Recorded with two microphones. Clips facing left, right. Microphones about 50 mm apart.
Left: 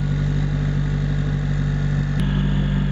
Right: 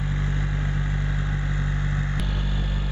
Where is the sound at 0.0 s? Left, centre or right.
Right.